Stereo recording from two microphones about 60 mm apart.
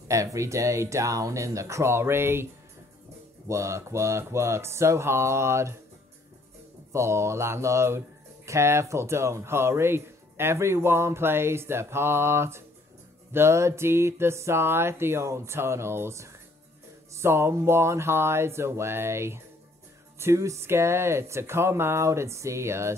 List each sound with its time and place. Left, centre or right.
0.1 s speech: right
3.4 s speech: right
6.9 s speech: right